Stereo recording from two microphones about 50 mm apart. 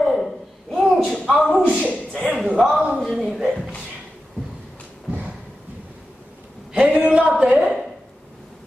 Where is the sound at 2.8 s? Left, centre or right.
Centre.